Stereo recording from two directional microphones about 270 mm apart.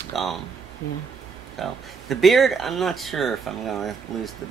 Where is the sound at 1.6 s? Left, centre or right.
Centre.